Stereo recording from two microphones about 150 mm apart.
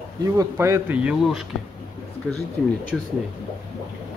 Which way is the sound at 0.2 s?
20° right (ahead or behind).